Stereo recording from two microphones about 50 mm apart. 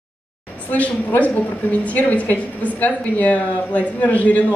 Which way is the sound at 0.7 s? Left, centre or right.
Left.